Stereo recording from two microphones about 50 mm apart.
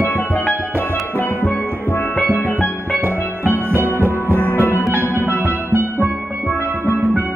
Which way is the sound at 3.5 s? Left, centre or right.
Right.